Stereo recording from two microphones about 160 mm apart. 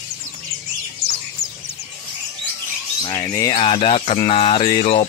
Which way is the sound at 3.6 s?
35° left (ahead or behind).